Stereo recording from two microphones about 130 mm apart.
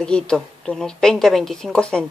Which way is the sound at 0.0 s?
5° left (ahead or behind).